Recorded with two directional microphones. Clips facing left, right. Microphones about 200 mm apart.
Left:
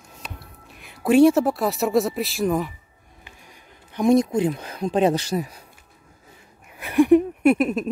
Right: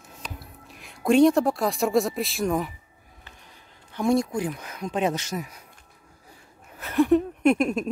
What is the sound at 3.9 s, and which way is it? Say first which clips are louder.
Speech: left 5 dB; 20° left (ahead or behind).